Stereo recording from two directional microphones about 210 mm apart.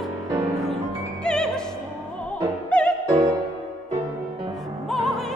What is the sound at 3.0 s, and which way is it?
Music, 15° right (ahead or behind).